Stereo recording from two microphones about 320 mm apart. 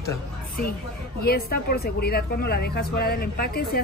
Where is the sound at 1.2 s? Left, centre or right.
Left.